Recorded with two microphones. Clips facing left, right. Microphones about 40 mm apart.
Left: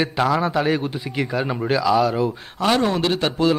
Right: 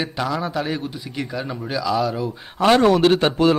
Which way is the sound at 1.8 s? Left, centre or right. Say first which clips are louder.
Left 2 dB; centre.